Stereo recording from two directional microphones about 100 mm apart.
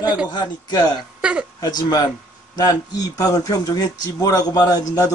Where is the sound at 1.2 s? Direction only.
10° right (ahead or behind).